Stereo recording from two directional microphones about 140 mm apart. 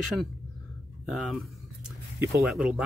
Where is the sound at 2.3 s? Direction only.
Centre (ahead or behind).